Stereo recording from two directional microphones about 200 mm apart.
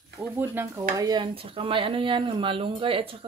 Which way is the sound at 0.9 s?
20° right (ahead or behind).